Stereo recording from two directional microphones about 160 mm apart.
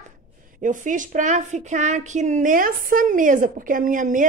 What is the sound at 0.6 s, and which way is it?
A woman's voice, 55° right (ahead or behind).